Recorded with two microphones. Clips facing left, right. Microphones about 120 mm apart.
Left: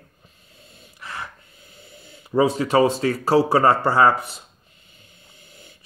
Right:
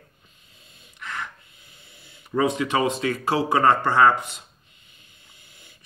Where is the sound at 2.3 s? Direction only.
30° left (ahead or behind).